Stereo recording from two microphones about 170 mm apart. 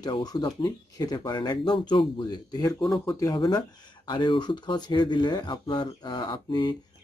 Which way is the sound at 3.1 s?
20° left (ahead or behind).